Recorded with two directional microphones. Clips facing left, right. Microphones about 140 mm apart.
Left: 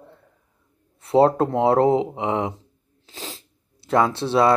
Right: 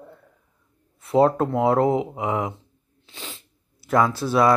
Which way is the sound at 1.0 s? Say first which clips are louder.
Left 2 dB; 30° left (ahead or behind).